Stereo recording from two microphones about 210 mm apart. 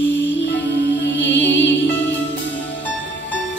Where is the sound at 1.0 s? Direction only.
60° left (ahead or behind).